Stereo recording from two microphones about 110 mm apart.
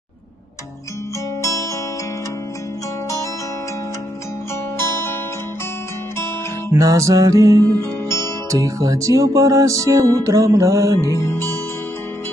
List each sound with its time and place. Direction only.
1.4 s music: 30° left (ahead or behind)
4.7 s guitar: 20° left (ahead or behind)
6.7 s music: 25° right (ahead or behind)
11.1 s music: 25° left (ahead or behind)